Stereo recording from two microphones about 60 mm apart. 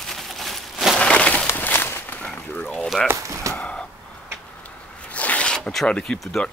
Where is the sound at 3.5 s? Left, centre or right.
Left.